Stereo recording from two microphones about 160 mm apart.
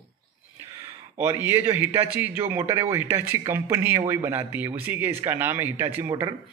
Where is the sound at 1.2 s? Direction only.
15° right (ahead or behind).